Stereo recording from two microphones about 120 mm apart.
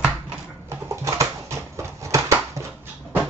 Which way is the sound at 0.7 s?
25° right (ahead or behind).